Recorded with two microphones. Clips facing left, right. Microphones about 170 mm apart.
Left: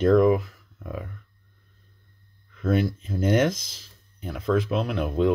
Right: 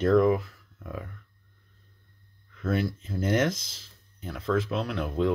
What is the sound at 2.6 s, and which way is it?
Speech, 20° left (ahead or behind).